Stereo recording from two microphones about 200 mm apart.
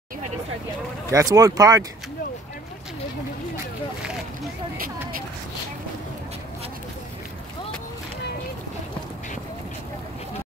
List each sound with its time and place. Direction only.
1.1 s speech: 15° right (ahead or behind)